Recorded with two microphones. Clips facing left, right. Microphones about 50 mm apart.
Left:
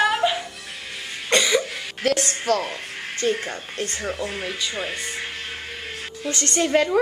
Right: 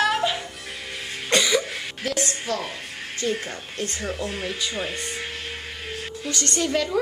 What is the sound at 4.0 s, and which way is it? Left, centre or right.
Speech, left.